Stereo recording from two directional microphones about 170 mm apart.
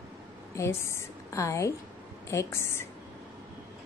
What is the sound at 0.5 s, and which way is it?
A woman's voice, 15° left (ahead or behind).